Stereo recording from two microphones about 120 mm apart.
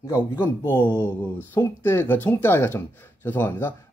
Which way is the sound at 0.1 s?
20° left (ahead or behind).